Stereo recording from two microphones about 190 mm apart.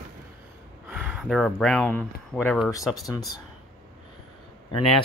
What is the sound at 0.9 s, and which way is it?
Speech, 5° right (ahead or behind).